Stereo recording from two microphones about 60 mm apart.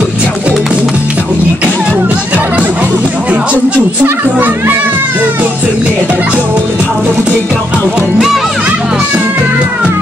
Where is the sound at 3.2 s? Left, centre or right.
Right.